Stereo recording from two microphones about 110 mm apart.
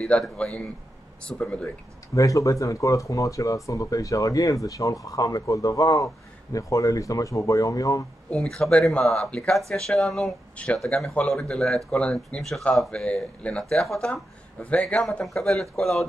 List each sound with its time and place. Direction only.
0.2 s speech: 10° left (ahead or behind)
2.1 s speech: 30° left (ahead or behind)
8.3 s speech: 5° left (ahead or behind)